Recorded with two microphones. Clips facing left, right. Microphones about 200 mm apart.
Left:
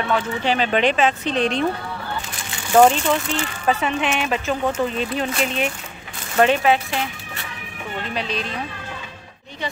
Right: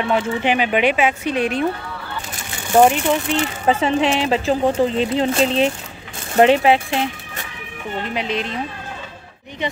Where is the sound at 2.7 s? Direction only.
15° right (ahead or behind).